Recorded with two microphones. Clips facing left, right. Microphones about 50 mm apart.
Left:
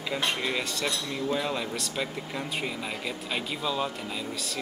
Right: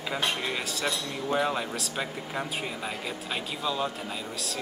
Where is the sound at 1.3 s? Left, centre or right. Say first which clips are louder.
Right 4 dB; centre.